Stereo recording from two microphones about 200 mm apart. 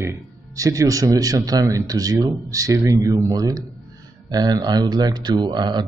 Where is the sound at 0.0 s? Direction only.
15° right (ahead or behind).